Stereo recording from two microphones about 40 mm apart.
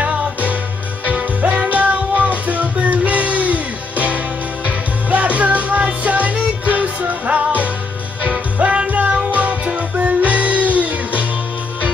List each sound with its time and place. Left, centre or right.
0.0 s music: right
8.8 s music: right